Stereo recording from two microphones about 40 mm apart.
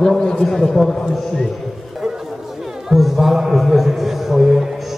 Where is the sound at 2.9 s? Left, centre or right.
Centre.